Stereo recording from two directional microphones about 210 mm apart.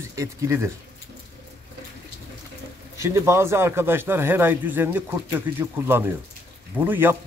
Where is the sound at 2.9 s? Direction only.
15° right (ahead or behind).